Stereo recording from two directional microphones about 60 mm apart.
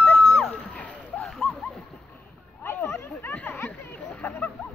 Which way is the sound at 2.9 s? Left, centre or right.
Left.